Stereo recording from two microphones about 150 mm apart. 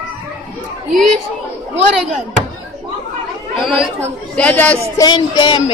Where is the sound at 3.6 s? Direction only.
Centre (ahead or behind).